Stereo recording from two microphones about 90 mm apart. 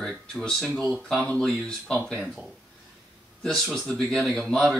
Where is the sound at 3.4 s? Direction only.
5° left (ahead or behind).